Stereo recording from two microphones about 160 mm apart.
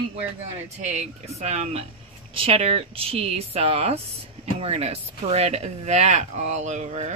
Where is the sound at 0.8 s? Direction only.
45° right (ahead or behind).